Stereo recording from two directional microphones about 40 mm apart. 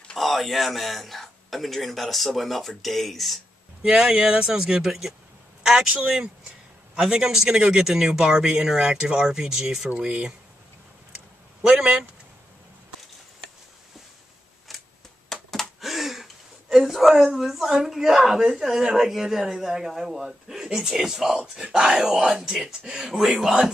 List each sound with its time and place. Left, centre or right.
0.2 s a man's voice: centre
3.8 s speech: centre
7.0 s speech: centre
11.8 s speech: right
14.7 s typewriter: centre
15.3 s gasp: centre
15.8 s a sound: centre
17.8 s speech: centre